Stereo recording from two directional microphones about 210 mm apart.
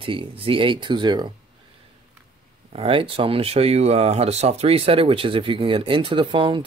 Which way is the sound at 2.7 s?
25° right (ahead or behind).